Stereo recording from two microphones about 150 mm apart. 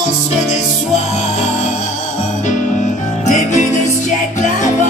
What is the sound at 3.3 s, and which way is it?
Music, 55° left (ahead or behind).